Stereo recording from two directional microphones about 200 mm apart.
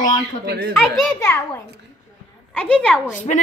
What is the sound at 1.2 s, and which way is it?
A child's voice, 10° left (ahead or behind).